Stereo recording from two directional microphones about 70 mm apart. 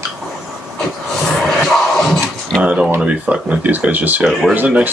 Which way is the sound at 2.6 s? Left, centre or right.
Centre.